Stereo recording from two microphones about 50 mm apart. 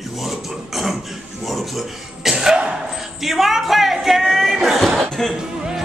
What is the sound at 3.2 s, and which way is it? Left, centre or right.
Chuckle, centre.